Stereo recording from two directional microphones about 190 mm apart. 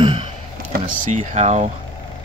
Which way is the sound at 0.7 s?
40° right (ahead or behind).